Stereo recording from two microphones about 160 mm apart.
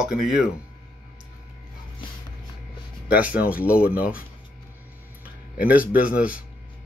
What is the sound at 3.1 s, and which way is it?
Speech, 10° right (ahead or behind).